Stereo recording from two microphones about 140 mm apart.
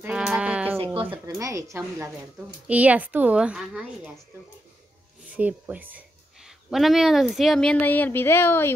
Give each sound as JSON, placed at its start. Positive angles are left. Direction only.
{"t": 0.0, "sound": "music", "side_deg": -5}
{"t": 1.2, "sound": "a woman's voice", "side_deg": -25}
{"t": 5.3, "sound": "speech", "side_deg": -10}